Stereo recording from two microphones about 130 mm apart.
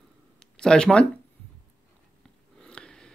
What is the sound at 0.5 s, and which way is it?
Speech, 5° left (ahead or behind).